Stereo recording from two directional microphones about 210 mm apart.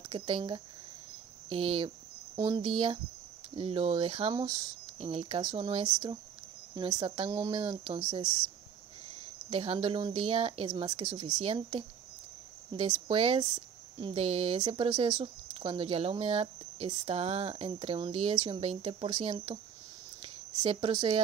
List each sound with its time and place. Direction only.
0.1 s speech: 25° right (ahead or behind)
9.5 s speech: 25° right (ahead or behind)
20.6 s speech: 25° right (ahead or behind)